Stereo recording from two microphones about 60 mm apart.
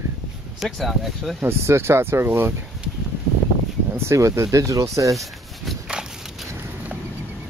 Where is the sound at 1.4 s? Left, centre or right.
Right.